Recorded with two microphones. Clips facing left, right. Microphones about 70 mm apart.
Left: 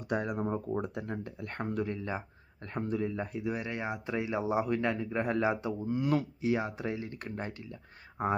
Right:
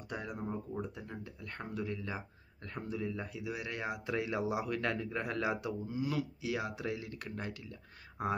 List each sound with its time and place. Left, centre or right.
0.1 s speech: left
2.0 s speech: left
5.9 s speech: left
6.4 s speech: left